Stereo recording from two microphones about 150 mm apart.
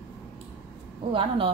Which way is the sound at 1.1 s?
35° right (ahead or behind).